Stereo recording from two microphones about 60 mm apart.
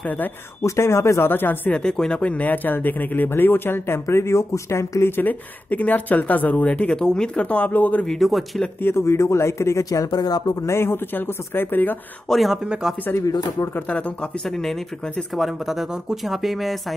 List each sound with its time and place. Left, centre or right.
0.6 s speech: left
1.3 s speech: left
1.7 s speech: centre; by 5.3 s left
5.7 s speech: left
7.4 s speech: left
8.1 s speech: centre
8.8 s speech: left
10.7 s speech: left
12.3 s speech: centre
14.6 s speech: centre